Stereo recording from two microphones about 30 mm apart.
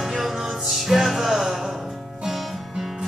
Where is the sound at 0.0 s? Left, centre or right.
Centre.